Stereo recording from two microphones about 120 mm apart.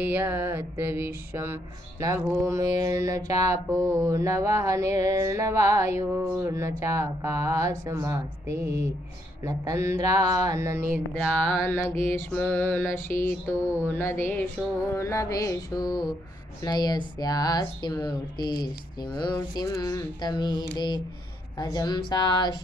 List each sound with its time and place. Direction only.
0.0 s music: 15° right (ahead or behind)
11.1 s music: 20° left (ahead or behind)
12.0 s carnatic music: 20° left (ahead or behind)
12.3 s music: 10° left (ahead or behind)
13.8 s carnatic music: 20° left (ahead or behind)
16.6 s speech: 35° left (ahead or behind)